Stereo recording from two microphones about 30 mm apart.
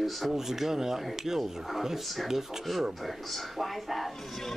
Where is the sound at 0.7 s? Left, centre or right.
Centre.